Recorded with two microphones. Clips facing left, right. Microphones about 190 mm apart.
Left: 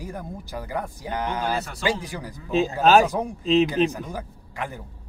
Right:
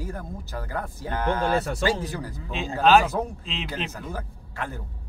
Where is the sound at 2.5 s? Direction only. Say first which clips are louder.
Left 2 dB; 40° left (ahead or behind).